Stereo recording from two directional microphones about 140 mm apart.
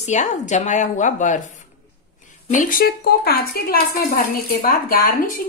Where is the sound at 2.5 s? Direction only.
70° left (ahead or behind).